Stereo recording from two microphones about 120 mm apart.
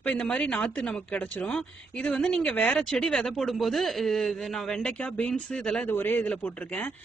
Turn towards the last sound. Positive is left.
turn(degrees=15)  # may be behind; listen again after turning